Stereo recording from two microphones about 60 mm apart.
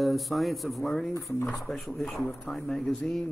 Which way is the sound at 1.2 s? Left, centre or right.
Left.